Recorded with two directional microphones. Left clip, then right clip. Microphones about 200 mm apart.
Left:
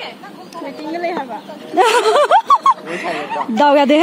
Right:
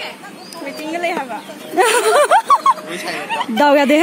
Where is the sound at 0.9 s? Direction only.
20° right (ahead or behind).